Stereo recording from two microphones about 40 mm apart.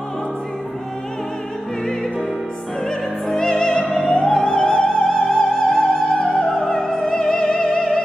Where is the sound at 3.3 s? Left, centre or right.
Centre.